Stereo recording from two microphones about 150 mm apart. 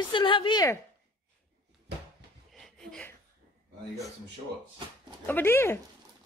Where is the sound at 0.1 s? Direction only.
35° left (ahead or behind).